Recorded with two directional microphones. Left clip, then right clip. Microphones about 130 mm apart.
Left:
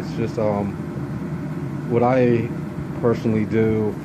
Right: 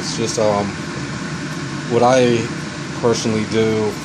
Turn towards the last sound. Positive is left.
turn(degrees=-10)  # may be behind; listen again after turning